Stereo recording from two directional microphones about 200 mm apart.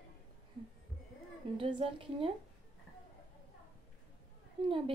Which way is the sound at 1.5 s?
25° right (ahead or behind).